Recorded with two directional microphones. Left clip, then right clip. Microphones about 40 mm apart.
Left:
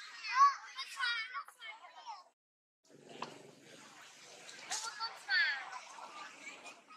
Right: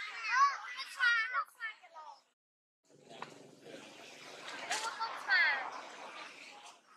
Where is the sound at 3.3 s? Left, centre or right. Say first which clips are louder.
Right 2 dB; centre.